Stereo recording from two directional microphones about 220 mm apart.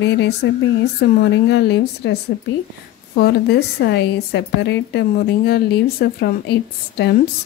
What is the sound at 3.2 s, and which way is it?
A woman's voice, 50° left (ahead or behind).